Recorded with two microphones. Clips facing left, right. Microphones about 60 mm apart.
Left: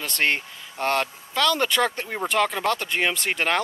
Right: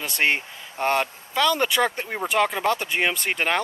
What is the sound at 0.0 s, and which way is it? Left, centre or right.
Speech, centre.